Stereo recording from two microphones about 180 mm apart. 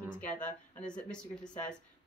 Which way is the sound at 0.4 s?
5° left (ahead or behind).